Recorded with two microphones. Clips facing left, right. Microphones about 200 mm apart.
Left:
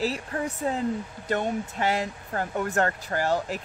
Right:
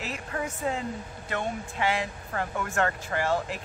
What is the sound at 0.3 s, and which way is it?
Speech, 30° left (ahead or behind).